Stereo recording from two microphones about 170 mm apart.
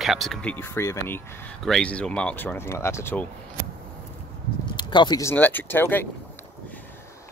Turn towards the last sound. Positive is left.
turn(degrees=10)  # may be behind; listen again after turning